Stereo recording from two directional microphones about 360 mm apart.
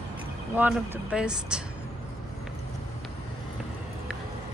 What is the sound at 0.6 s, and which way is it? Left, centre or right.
Speech, centre.